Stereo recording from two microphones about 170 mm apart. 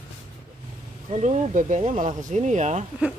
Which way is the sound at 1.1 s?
45° right (ahead or behind).